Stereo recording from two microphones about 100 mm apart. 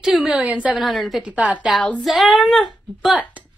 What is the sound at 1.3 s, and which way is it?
Speech, 10° right (ahead or behind).